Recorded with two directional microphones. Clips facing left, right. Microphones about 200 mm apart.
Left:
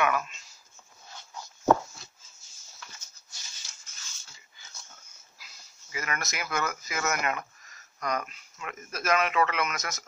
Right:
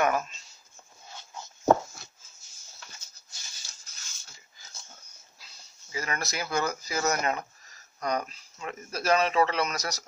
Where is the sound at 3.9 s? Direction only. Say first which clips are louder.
Even; 35° right (ahead or behind).